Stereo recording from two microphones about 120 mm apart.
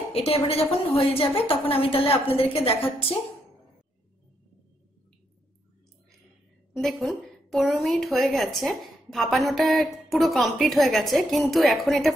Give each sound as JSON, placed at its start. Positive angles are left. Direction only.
{"t": 0.1, "sound": "a woman's voice", "side_deg": 55}
{"t": 6.7, "sound": "a woman's voice", "side_deg": 0}